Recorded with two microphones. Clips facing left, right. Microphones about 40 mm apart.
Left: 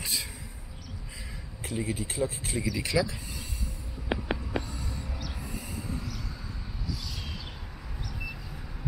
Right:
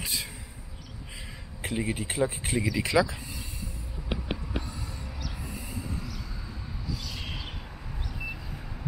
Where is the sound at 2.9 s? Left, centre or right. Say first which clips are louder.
Right 4 dB; right.